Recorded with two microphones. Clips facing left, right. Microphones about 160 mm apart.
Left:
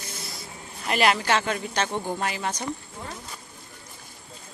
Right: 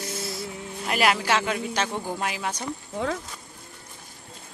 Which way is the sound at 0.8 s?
5° right (ahead or behind).